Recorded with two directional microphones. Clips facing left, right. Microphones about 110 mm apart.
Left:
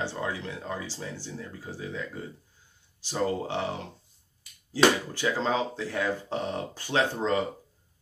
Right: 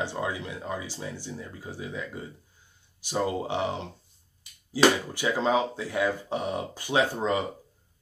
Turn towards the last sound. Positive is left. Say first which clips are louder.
# right 1 dB
turn(degrees=-15)  # may be behind; listen again after turning